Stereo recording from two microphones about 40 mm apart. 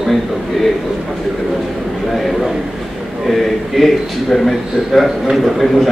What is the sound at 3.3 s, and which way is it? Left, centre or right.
A man's voice, centre.